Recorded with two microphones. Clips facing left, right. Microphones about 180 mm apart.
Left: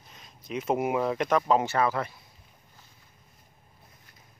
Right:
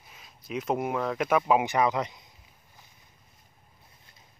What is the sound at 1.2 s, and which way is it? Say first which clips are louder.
Speech: right 3 dB; 10° right (ahead or behind).